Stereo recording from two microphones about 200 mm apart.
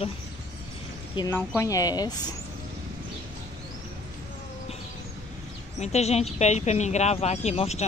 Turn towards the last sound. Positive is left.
turn(degrees=35)  # may be behind; listen again after turning